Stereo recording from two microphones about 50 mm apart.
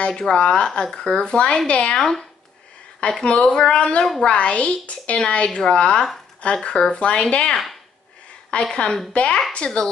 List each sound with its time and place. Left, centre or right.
0.0 s speech: centre